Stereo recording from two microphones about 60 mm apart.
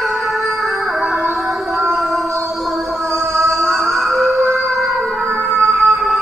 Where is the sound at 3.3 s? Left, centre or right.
Right.